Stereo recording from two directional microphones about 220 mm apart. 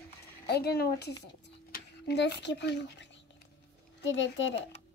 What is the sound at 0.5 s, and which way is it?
Speech, 45° left (ahead or behind).